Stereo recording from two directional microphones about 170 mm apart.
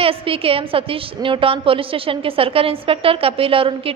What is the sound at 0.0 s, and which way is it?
A woman's voice, 35° right (ahead or behind).